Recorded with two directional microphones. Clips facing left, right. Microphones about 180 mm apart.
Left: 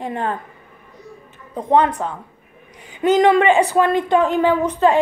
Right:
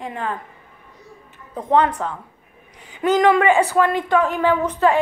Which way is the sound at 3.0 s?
25° left (ahead or behind).